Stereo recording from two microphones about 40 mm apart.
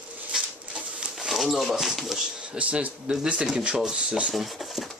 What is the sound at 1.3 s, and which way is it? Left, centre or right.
Speech, centre.